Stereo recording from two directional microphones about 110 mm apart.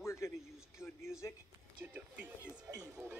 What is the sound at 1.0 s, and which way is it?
Speech, 25° left (ahead or behind).